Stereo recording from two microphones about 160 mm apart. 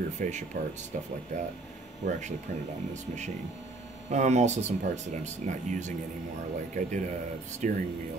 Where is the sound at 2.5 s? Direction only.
50° right (ahead or behind).